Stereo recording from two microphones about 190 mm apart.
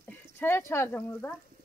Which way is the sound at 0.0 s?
10° left (ahead or behind).